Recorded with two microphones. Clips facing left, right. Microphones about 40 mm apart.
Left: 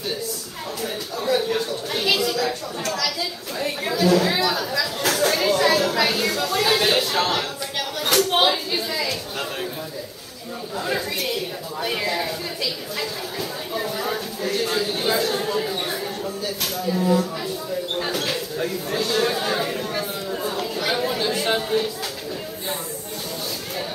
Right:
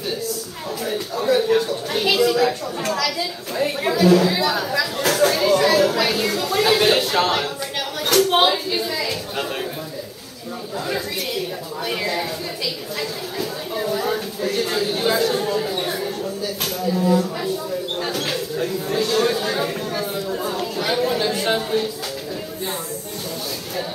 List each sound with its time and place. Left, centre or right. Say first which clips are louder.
0.8 s a sound: right 4 dB; centre
3.5 s a woman's voice: right 4 dB; centre
8.2 s a sound: right 3 dB; centre
11.8 s speech: even; centre
13.4 s a sound: right 3 dB; centre
16.8 s speech: right 2 dB; centre
17.9 s mouse: left 1 dB; centre
19.0 s speech: right 2 dB; centre
19.3 s chatter: right 1 dB; centre